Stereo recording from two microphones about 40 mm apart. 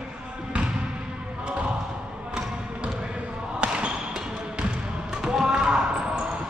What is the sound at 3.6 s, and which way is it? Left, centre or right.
Basketball bounce, right.